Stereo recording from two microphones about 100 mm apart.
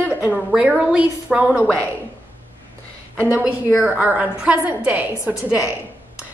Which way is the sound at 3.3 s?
10° right (ahead or behind).